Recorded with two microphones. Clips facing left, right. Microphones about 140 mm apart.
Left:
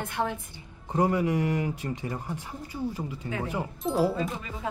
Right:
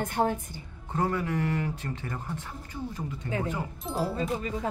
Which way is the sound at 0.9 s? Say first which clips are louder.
Left 4 dB; 15° left (ahead or behind).